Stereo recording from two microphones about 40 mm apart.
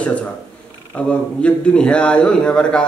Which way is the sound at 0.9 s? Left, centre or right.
Left.